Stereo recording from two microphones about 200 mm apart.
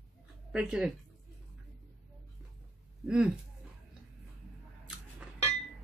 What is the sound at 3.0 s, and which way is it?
Speech, 5° right (ahead or behind).